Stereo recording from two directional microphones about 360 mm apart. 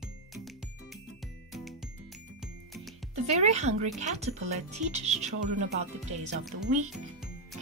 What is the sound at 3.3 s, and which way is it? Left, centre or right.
Speech, centre.